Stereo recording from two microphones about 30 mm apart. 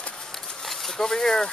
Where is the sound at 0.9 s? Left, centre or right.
Centre.